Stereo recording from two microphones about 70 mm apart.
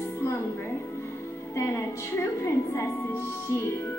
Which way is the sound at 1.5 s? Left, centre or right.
Left.